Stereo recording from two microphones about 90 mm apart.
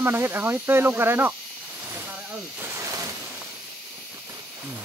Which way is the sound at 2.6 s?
35° right (ahead or behind).